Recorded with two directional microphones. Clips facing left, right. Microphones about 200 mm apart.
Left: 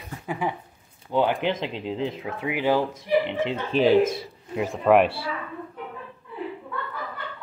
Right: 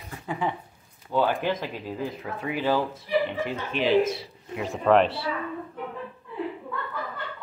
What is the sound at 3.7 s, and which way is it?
Speech, 45° left (ahead or behind).